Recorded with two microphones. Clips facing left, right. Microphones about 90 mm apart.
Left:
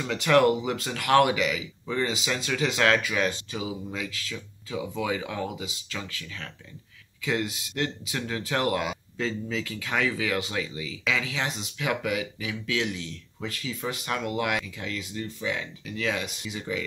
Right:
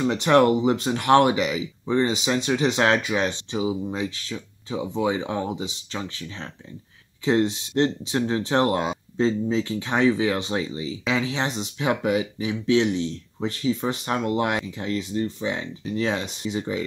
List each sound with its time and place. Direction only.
0.0 s speech: 25° right (ahead or behind)